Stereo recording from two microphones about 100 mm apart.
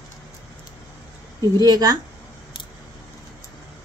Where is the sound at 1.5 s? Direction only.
40° right (ahead or behind).